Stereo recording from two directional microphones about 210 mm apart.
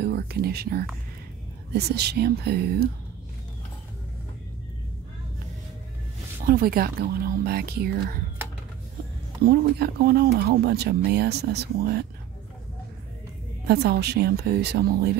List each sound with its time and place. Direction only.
0.0 s a sound: 50° right (ahead or behind)
1.7 s speech: 50° right (ahead or behind)
6.4 s speech: 45° right (ahead or behind)
9.5 s speech: 50° right (ahead or behind)
13.7 s speech: 50° right (ahead or behind)